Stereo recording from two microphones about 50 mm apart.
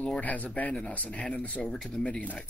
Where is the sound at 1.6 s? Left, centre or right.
Centre.